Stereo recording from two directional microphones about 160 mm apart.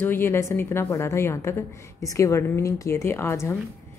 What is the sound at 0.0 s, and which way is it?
Speech, 15° left (ahead or behind).